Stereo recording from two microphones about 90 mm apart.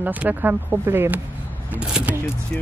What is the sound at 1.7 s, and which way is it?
Speech, 15° right (ahead or behind).